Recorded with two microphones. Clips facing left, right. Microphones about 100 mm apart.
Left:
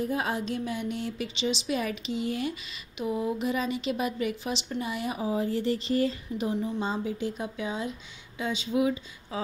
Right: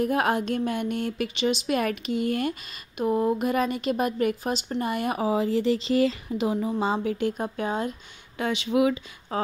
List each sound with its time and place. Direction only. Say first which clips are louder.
0.0 s a woman's voice: right 6 dB; 65° right (ahead or behind)
8.4 s speech: right 4 dB; 70° right (ahead or behind); by 9.0 s 85° right
9.3 s speech: right 5 dB; 50° right (ahead or behind)